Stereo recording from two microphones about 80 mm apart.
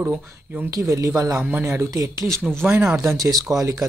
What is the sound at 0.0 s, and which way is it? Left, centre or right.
Speech, right.